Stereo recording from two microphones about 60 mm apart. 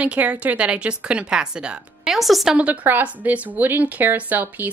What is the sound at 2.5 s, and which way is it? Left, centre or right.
A woman's voice, right.